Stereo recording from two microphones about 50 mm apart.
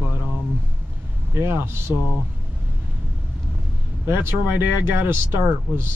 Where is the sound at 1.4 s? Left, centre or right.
Right.